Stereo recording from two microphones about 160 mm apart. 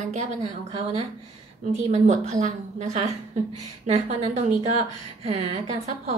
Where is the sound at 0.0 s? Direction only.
45° right (ahead or behind).